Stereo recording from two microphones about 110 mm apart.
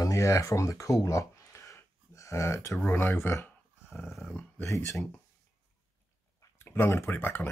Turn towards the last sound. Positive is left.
turn(degrees=15)  # may be behind; listen again after turning